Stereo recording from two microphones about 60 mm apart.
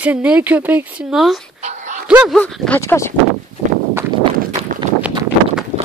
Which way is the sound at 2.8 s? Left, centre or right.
Left.